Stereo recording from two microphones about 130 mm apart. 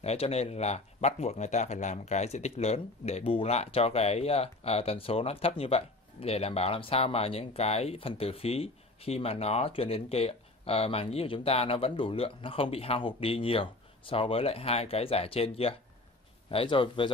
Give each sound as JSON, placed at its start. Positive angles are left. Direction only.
{"t": 0.0, "sound": "a man's voice", "side_deg": 55}